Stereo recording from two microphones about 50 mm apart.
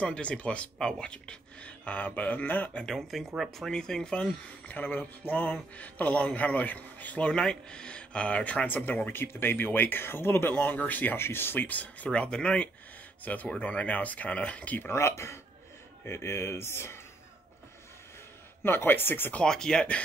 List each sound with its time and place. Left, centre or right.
0.0 s speech: left
2.8 s speech: centre; by 7.2 s left
7.2 s speech: centre; by 9.1 s left
9.1 s speech: left
10.8 s speech: left
11.1 s speech: left
11.6 s speech: left
13.2 s speech: left
13.5 s speech: left
15.0 s speech: left
18.6 s speech: left
19.4 s speech: centre